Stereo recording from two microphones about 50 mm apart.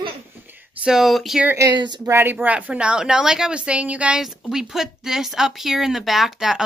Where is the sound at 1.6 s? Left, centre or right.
Right.